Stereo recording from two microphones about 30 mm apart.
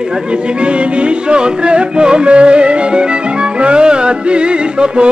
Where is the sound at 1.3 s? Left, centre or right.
Right.